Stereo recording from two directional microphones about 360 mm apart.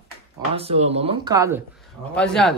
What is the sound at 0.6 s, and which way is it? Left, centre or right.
Speech, centre.